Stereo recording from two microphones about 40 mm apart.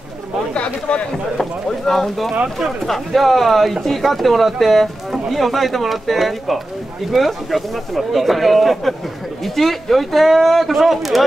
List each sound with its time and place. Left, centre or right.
0.6 s speech: left
1.4 s speech: centre